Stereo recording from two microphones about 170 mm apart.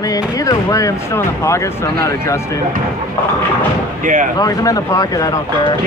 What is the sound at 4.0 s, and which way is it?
Speech, 50° right (ahead or behind).